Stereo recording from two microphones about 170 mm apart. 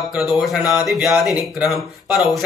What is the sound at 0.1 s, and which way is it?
Speech, centre (ahead or behind).